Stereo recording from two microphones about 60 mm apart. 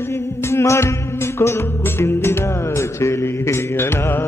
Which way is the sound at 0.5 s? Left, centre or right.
Left.